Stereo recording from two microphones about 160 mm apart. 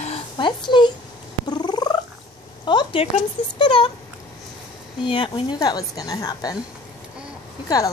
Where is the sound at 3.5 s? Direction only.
30° left (ahead or behind).